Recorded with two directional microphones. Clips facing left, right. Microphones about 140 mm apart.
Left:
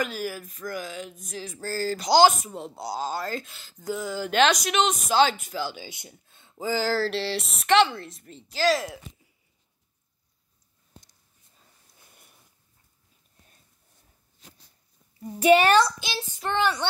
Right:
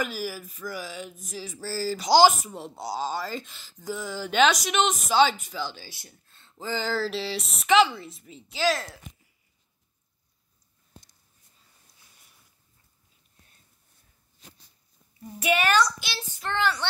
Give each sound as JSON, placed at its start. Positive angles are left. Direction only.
{"t": 0.0, "sound": "speech", "side_deg": -5}
{"t": 5.8, "sound": "speech", "side_deg": 20}
{"t": 12.0, "sound": "a sound", "side_deg": 55}
{"t": 15.3, "sound": "child singing", "side_deg": 30}